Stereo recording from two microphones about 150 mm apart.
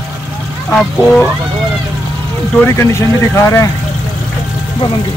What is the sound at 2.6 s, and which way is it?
Speech, 15° left (ahead or behind).